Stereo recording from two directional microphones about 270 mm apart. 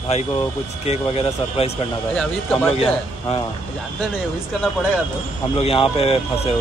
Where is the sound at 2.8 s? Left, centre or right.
Left.